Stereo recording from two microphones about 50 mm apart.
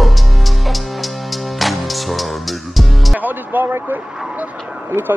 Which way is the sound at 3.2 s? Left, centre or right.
Right.